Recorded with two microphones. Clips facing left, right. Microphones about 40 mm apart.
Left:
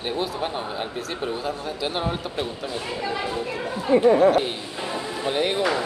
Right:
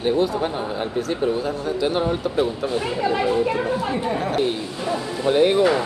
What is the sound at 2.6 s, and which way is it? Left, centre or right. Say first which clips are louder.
Speech: right 6 dB; right.